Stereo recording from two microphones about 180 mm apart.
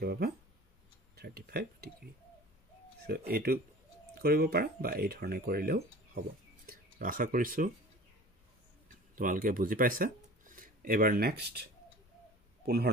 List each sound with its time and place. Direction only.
0.0 s speech: 60° right (ahead or behind)
3.1 s speech: 60° right (ahead or behind)
9.1 s speech: 50° right (ahead or behind)
12.6 s a man's voice: 60° right (ahead or behind)